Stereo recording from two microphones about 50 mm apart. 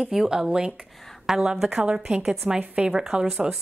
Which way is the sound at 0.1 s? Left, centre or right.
Centre.